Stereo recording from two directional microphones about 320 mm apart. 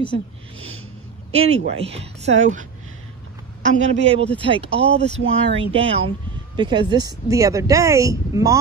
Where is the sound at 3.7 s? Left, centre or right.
Right.